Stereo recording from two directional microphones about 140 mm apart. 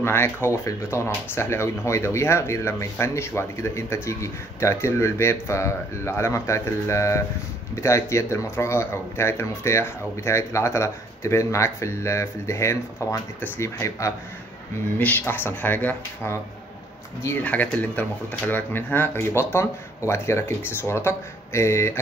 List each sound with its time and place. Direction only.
0.0 s speech: 15° left (ahead or behind)
17.4 s speech: 10° left (ahead or behind)